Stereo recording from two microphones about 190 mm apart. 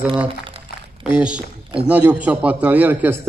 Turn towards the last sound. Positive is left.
turn(degrees=-10)  # may be behind; listen again after turning